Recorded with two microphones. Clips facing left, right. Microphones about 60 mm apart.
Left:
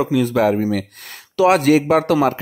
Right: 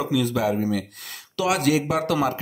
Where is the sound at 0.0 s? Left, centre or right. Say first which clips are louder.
Left 6 dB; left.